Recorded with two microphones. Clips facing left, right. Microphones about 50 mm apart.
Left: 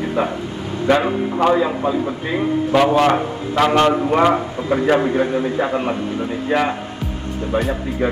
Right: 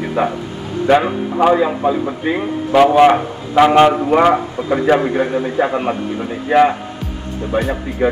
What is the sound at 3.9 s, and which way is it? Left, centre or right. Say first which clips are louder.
Speech: right 3 dB; centre.